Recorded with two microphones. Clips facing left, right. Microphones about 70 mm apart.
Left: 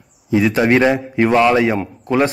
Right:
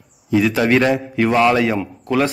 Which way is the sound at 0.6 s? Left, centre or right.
Centre.